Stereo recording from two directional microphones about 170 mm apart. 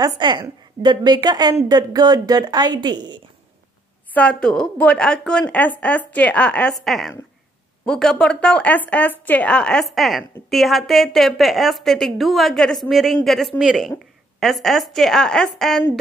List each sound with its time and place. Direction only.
0.2 s a woman's voice: 30° right (ahead or behind)
4.1 s a woman's voice: 10° left (ahead or behind)